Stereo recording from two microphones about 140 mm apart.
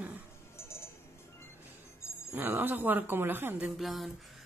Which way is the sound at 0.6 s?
20° left (ahead or behind).